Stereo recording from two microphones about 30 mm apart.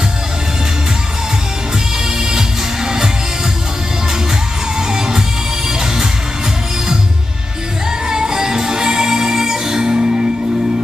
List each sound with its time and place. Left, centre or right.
2.3 s music: right
4.7 s music: right
8.1 s music: right